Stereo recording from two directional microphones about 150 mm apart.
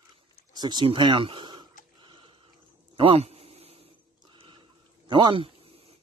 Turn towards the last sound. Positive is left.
turn(degrees=-35)  # may be behind; listen again after turning